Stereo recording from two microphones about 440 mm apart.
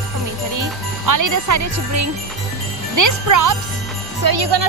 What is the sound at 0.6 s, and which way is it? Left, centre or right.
Speech, right.